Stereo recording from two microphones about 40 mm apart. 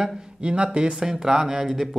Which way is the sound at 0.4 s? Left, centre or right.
Right.